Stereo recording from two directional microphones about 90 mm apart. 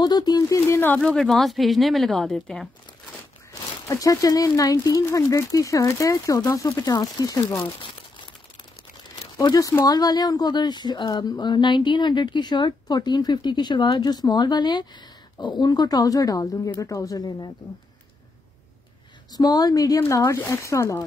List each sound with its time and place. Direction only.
0.0 s speech: 50° left (ahead or behind)
0.7 s a woman's voice: 20° left (ahead or behind)
3.8 s speech: 40° left (ahead or behind)
9.1 s crumpling: 50° left (ahead or behind)
9.8 s speech: 45° left (ahead or behind)
19.3 s speech: 45° left (ahead or behind)